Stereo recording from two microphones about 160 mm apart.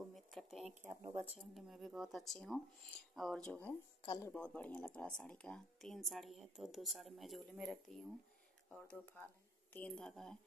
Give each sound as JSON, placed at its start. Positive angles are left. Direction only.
{"t": 0.1, "sound": "a sound", "side_deg": 0}
{"t": 0.8, "sound": "speech", "side_deg": -15}
{"t": 1.3, "sound": "speech", "side_deg": -5}
{"t": 4.0, "sound": "speech", "side_deg": 20}
{"t": 4.3, "sound": "speech", "side_deg": 10}